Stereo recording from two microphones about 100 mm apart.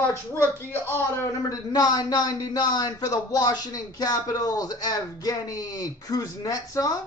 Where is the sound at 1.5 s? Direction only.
40° left (ahead or behind).